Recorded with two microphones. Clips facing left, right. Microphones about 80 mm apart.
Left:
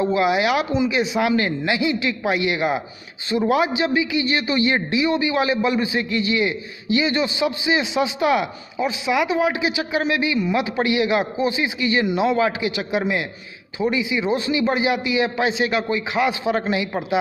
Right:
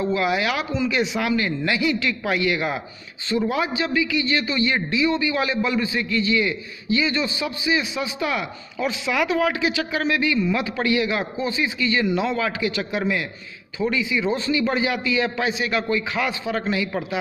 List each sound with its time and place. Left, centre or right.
0.0 s speech: centre
0.7 s speech: centre
1.6 s a man's voice: centre
8.8 s a man's voice: centre